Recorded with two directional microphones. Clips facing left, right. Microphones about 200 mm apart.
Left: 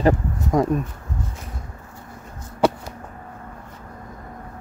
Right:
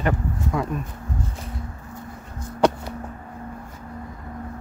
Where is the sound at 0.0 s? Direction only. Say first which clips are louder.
Left 5 dB; 40° left (ahead or behind).